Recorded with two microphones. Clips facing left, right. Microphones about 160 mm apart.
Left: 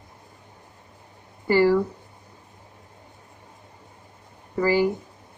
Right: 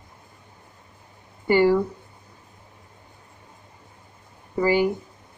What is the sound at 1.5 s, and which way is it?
Speech, 20° right (ahead or behind).